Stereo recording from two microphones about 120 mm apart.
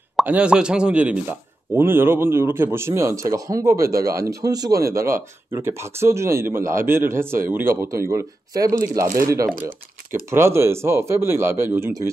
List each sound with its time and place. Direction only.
0.3 s speech: 10° right (ahead or behind)